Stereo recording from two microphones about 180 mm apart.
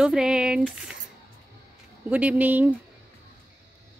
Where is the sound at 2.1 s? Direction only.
10° right (ahead or behind).